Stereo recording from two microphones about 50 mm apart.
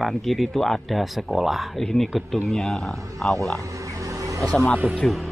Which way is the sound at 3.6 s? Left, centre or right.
Right.